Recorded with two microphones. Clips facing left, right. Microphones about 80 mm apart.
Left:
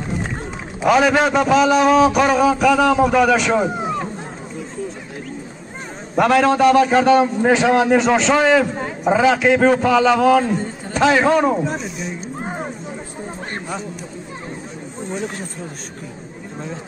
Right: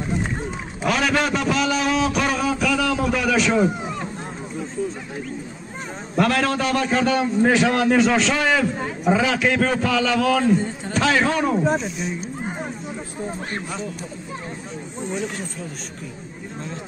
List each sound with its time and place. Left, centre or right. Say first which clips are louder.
0.8 s a man's voice: left 7 dB; centre
6.1 s a man's voice: left 6 dB; centre